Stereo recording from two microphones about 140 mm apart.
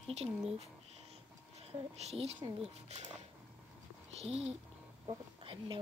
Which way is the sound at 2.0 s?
50° right (ahead or behind).